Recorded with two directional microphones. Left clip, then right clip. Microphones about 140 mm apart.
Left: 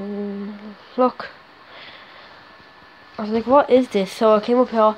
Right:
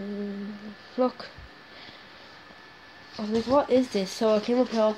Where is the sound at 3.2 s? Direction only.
20° left (ahead or behind).